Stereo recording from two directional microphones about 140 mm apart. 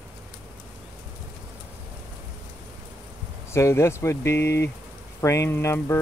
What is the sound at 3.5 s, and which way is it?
Speech, 20° left (ahead or behind).